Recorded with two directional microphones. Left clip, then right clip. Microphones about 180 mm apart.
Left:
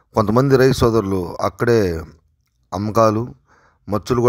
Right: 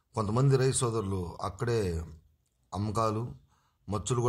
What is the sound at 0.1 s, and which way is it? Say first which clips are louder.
A man's voice: left 14 dB; 45° left (ahead or behind).